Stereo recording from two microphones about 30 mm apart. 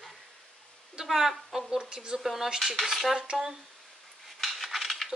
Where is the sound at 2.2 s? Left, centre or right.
Centre.